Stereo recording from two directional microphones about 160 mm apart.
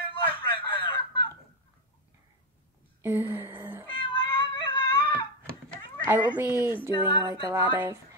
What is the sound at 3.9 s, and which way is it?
Cat, 30° left (ahead or behind).